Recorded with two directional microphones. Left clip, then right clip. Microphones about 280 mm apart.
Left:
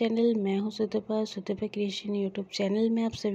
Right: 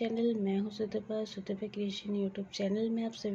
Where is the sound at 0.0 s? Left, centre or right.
Left.